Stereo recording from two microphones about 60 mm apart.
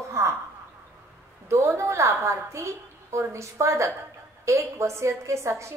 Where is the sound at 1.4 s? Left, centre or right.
Right.